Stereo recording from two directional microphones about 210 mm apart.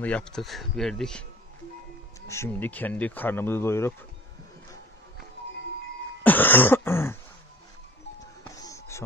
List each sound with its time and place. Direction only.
0.0 s speech: 5° left (ahead or behind)
2.2 s speech: 10° left (ahead or behind)
6.2 s throat clearing: 10° left (ahead or behind)
8.5 s music: 15° left (ahead or behind)